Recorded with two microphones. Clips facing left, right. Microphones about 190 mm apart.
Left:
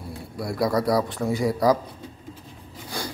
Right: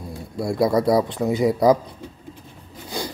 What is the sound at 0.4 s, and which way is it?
Speech, 25° right (ahead or behind).